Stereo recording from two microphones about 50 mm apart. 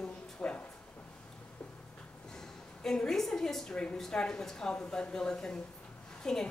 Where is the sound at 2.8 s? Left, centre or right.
Centre.